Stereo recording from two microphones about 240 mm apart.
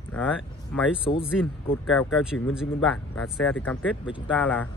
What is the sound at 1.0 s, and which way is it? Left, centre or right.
Speech, left.